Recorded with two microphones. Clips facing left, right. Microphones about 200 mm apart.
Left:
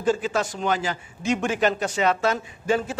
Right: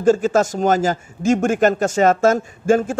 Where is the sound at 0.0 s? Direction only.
45° right (ahead or behind).